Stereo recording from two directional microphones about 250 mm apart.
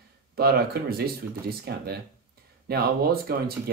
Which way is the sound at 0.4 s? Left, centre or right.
Right.